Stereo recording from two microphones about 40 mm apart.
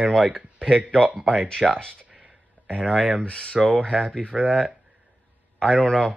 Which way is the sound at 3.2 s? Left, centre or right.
Left.